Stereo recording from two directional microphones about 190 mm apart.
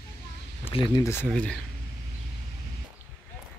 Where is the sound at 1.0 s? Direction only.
10° left (ahead or behind).